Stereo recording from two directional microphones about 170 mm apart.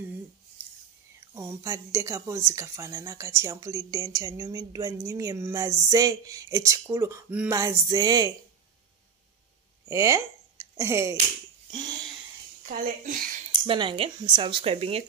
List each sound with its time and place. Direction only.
1.3 s a woman's voice: 15° right (ahead or behind)
9.8 s speech: 20° right (ahead or behind)
11.7 s a sound: 25° right (ahead or behind)
12.6 s a woman's voice: 50° right (ahead or behind)
13.5 s speech: 30° right (ahead or behind)